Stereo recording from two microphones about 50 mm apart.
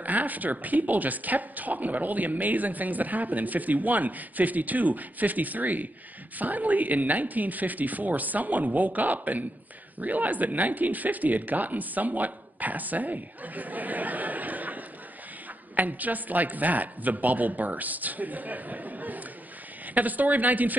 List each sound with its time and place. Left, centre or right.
0.0 s a woman's voice: right